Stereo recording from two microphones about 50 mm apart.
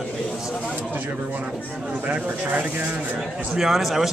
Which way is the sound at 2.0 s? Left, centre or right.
Right.